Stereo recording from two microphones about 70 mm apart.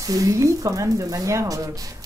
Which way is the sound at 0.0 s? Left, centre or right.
Right.